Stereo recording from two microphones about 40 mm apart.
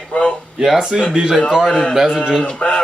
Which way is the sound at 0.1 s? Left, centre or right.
Left.